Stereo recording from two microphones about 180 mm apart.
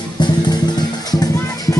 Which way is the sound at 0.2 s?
25° left (ahead or behind).